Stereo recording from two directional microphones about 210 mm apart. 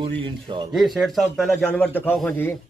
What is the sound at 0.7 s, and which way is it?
Speech, centre (ahead or behind).